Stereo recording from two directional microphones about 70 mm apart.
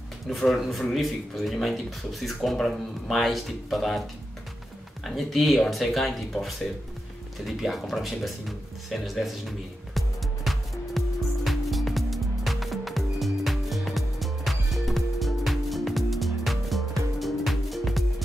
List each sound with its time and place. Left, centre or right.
0.5 s speech: centre
5.0 s speech: centre
9.9 s music: centre